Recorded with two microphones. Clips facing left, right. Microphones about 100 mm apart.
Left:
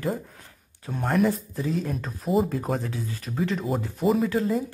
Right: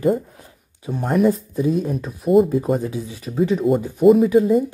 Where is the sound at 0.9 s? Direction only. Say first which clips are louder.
Right 5 dB; 5° right (ahead or behind).